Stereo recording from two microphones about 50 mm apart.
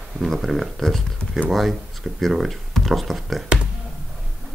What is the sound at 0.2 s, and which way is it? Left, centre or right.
Speech, centre.